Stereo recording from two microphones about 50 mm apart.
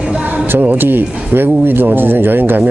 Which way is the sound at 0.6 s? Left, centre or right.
Right.